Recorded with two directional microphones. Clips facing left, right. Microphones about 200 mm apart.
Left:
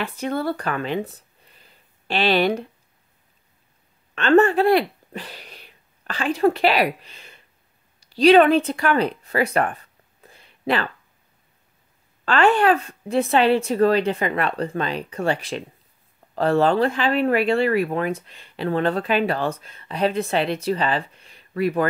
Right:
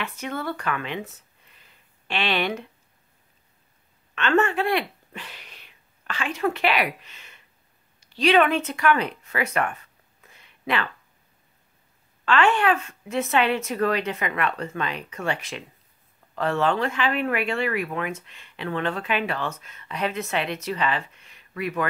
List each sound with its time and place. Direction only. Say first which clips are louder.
0.0 s speech: left 6 dB; 35° left (ahead or behind)
4.1 s speech: left 6 dB; 35° left (ahead or behind)
12.3 s speech: left 4 dB; 35° left (ahead or behind)